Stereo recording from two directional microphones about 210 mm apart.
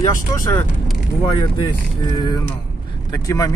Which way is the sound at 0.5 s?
10° left (ahead or behind).